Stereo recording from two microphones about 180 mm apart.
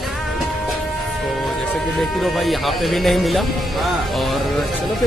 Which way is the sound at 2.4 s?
Centre (ahead or behind).